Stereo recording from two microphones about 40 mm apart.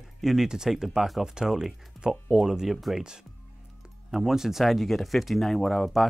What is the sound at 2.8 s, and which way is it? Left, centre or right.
Speech, centre.